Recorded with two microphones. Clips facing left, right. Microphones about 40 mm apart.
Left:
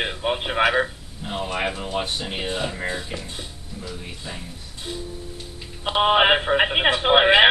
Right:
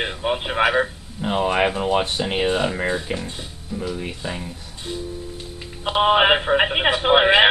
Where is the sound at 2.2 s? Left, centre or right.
Right.